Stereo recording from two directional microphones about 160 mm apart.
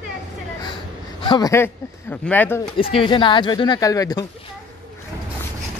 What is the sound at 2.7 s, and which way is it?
Speech, 35° left (ahead or behind).